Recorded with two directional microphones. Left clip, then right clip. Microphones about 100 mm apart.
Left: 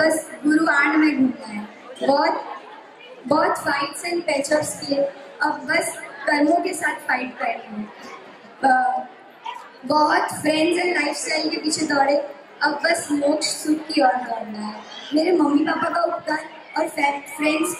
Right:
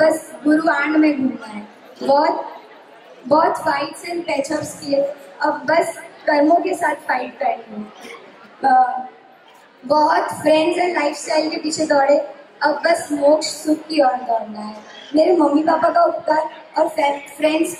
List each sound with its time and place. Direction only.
0.0 s a sound: 5° left (ahead or behind)
2.0 s a woman's voice: 5° left (ahead or behind)
8.5 s speech: 5° left (ahead or behind)
9.8 s a woman's voice: 5° left (ahead or behind)
14.3 s speech: 60° left (ahead or behind)
15.1 s a woman's voice: 5° left (ahead or behind)